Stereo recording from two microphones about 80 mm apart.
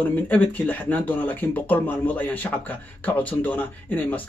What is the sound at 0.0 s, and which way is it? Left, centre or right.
Speech, left.